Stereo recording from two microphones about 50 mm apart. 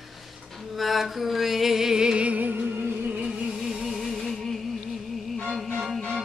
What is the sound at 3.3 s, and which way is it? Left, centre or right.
Music, centre.